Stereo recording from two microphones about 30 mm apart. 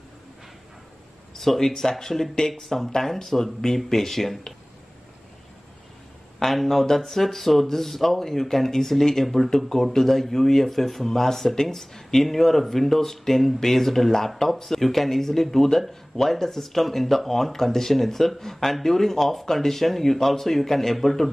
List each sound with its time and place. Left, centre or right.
1.3 s speech: centre
6.4 s speech: centre